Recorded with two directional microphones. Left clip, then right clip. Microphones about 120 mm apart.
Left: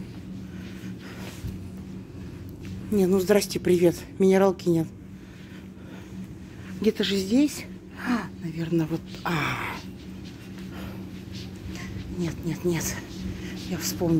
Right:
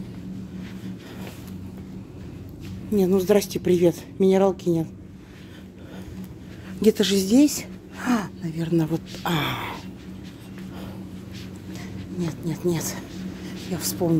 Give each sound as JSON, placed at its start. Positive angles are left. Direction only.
{"t": 2.9, "sound": "a woman's voice", "side_deg": -10}
{"t": 6.8, "sound": "a woman's voice", "side_deg": -50}
{"t": 11.7, "sound": "speech", "side_deg": -15}
{"t": 13.5, "sound": "a sound", "side_deg": -25}